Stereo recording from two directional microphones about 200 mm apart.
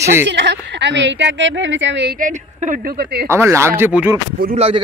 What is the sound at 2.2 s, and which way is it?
A woman's voice, 40° right (ahead or behind).